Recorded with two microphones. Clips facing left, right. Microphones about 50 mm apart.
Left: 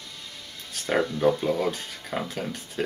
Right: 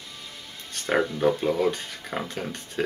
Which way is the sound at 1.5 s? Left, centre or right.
Centre.